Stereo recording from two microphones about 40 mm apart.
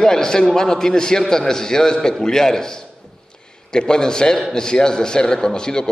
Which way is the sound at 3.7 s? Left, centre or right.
Centre.